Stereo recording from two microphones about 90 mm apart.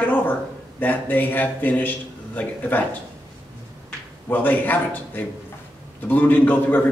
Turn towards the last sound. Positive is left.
turn(degrees=20)  # may be behind; listen again after turning